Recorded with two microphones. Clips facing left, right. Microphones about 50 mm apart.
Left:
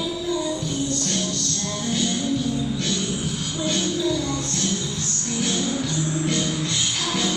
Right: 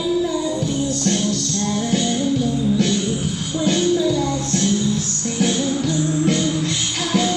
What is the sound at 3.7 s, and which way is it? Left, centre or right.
Music, centre.